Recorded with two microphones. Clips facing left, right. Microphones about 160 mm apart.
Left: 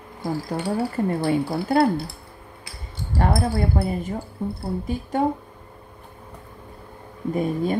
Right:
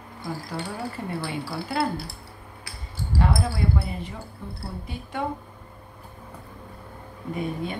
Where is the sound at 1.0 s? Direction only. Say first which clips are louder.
Left 9 dB; 40° left (ahead or behind).